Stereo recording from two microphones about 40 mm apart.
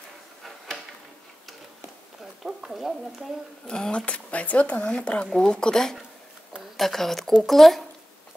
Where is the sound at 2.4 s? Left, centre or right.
Centre.